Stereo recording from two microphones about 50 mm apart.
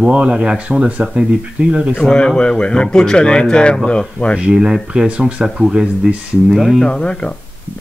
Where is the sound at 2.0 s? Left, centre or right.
Centre.